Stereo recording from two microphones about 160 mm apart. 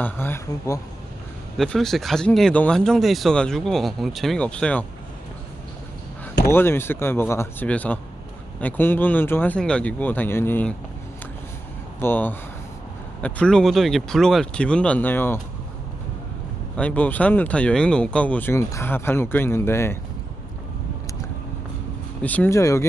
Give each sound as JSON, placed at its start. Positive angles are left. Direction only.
{"t": 0.0, "sound": "speech", "side_deg": 15}
{"t": 1.6, "sound": "speech", "side_deg": 0}
{"t": 6.4, "sound": "speech", "side_deg": 15}
{"t": 12.0, "sound": "speech", "side_deg": 10}
{"t": 16.7, "sound": "speech", "side_deg": 10}
{"t": 22.2, "sound": "speech", "side_deg": 10}